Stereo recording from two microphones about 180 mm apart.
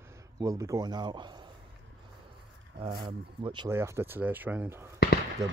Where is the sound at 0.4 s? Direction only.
20° right (ahead or behind).